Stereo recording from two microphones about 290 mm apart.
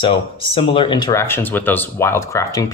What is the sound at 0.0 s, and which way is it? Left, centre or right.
Speech, centre.